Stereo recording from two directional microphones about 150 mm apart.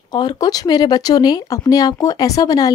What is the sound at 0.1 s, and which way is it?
Speech, 30° left (ahead or behind).